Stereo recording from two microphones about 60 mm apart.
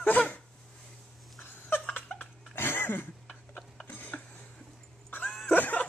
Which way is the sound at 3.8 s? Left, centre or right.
Left.